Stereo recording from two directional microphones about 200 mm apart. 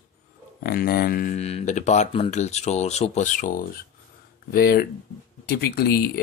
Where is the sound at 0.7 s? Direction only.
50° left (ahead or behind).